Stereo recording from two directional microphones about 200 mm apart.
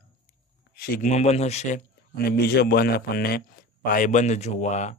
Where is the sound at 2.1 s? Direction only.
50° left (ahead or behind).